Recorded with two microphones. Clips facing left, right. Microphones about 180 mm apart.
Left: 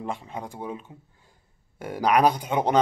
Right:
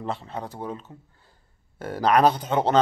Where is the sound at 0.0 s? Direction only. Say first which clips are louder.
Right 1 dB; 10° left (ahead or behind).